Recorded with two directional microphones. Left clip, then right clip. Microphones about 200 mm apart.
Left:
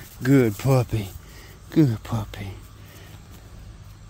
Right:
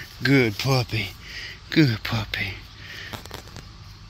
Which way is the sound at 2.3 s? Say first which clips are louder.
Right 11 dB; 15° left (ahead or behind).